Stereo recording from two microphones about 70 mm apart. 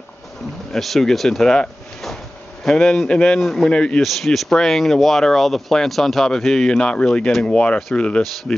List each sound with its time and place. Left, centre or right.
0.7 s a man's voice: centre
4.0 s a man's voice: centre